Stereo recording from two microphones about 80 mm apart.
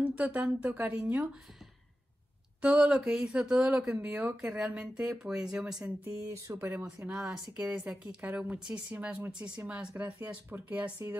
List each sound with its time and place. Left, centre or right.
0.0 s speech: centre
2.6 s speech: centre
6.2 s speech: right
6.5 s speech: right
7.2 s speech: centre